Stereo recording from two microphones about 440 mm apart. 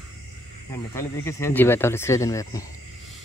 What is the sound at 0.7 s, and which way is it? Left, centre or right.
Speech, centre.